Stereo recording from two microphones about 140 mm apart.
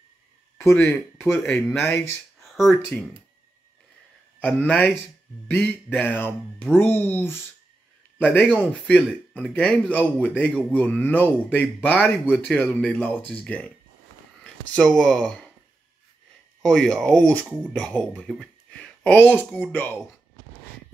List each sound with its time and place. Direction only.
0.6 s speech: 20° left (ahead or behind)
1.4 s speech: 5° left (ahead or behind)
1.8 s speech: 15° left (ahead or behind)
2.4 s a sound: centre (ahead or behind)
4.4 s speech: 10° left (ahead or behind)
15.0 s speech: 5° left (ahead or behind)
16.6 s speech: 5° left (ahead or behind)
18.7 s a sound: 10° left (ahead or behind)
19.7 s speech: 10° left (ahead or behind)